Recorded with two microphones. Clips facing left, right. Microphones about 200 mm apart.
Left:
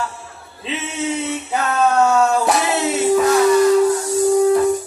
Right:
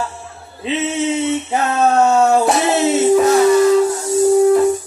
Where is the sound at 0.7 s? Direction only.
25° right (ahead or behind).